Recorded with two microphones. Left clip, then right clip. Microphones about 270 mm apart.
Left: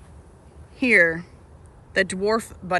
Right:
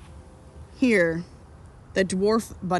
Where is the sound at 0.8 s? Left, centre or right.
Centre.